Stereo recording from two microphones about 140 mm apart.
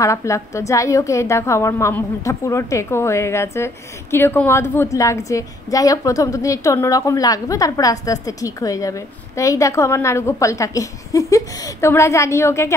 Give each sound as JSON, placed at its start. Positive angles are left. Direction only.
{"t": 0.0, "sound": "a woman's voice", "side_deg": 20}